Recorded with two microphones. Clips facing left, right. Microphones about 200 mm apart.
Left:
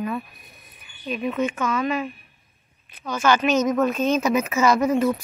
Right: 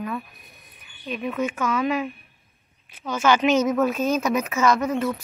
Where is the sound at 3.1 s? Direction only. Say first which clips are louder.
Right 1 dB; 15° right (ahead or behind).